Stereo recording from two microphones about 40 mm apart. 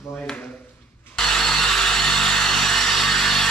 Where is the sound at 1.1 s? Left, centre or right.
Centre.